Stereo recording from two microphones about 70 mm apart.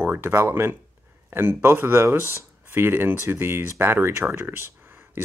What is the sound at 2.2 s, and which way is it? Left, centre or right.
Speech, left.